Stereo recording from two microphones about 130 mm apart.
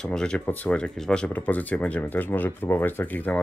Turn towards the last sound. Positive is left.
turn(degrees=15)  # may be behind; listen again after turning